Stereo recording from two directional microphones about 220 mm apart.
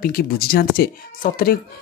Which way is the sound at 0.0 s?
40° left (ahead or behind).